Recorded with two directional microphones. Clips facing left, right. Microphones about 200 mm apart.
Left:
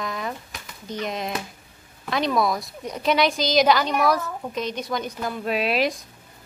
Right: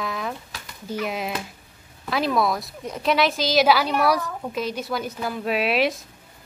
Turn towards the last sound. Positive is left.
turn(degrees=0)  # may be behind; listen again after turning